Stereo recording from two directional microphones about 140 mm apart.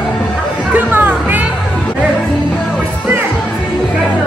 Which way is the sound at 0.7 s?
10° right (ahead or behind).